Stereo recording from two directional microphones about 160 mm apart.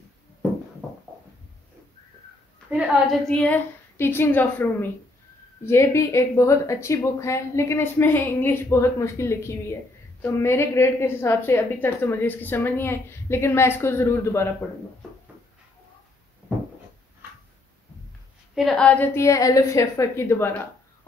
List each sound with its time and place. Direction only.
2.7 s a woman's voice: centre (ahead or behind); by 14.5 s 15° left (ahead or behind)
18.5 s a woman's voice: centre (ahead or behind)